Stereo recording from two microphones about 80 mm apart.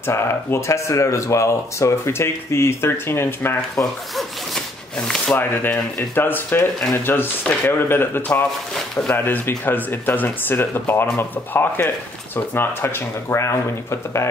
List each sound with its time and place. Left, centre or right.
0.0 s speech: left
3.8 s zipper: centre
5.3 s speech: left